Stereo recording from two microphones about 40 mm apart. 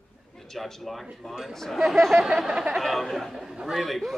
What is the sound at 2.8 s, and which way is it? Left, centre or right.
Speech, centre.